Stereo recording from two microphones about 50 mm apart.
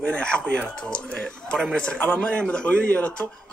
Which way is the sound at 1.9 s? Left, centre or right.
Left.